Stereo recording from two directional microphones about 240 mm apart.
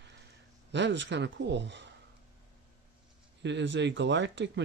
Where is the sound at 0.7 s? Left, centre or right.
Right.